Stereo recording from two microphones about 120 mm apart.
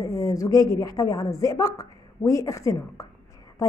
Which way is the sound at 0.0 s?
30° left (ahead or behind).